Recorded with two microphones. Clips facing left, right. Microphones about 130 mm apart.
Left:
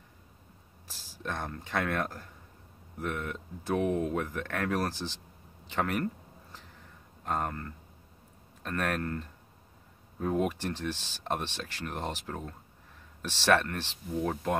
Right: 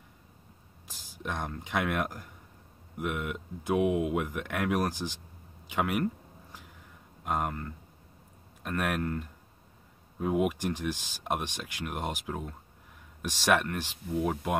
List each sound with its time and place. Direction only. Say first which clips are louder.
0.8 s speech: right 1 dB; 15° right (ahead or behind)
7.2 s speech: right 1 dB; 10° right (ahead or behind)